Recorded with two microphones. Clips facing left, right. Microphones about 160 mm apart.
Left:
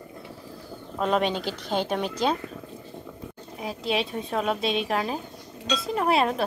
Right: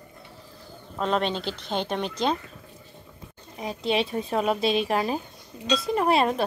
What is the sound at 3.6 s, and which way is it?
Speech, centre (ahead or behind).